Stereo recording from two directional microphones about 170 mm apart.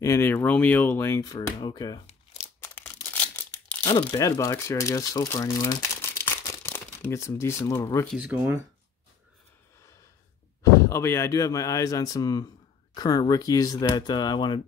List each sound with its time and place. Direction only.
0.0 s speech: 15° left (ahead or behind)
2.6 s a sound: 10° left (ahead or behind)
3.8 s speech: 25° left (ahead or behind)
8.1 s speech: 10° right (ahead or behind)
10.6 s speech: 20° left (ahead or behind)